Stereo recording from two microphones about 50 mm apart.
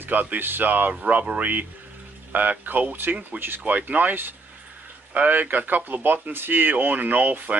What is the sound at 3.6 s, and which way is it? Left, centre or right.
Speech, right.